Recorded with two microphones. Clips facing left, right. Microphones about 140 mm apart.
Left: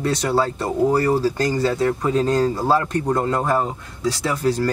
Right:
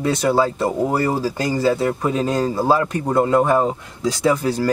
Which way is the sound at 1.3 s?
10° right (ahead or behind).